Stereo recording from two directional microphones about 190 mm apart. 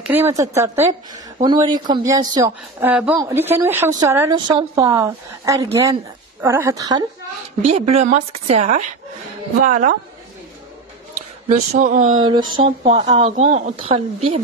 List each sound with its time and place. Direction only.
0.0 s speech: 10° right (ahead or behind)
7.6 s a woman's voice: 30° right (ahead or behind)
11.1 s speech: 35° right (ahead or behind)
12.5 s speech: 30° right (ahead or behind)